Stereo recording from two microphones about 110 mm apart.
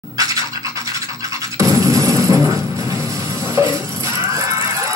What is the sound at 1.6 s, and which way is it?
Music, 30° right (ahead or behind).